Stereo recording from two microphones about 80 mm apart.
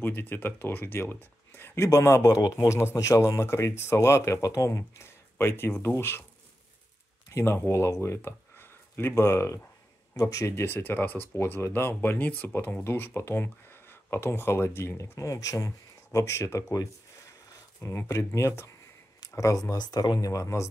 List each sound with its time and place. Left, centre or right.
0.0 s speech: left
7.2 s speech: left
17.8 s speech: left